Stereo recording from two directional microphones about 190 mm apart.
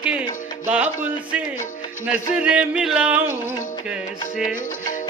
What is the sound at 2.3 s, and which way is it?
Speech, 5° right (ahead or behind).